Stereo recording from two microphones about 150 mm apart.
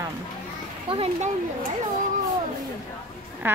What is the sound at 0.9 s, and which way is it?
Speech, 40° right (ahead or behind).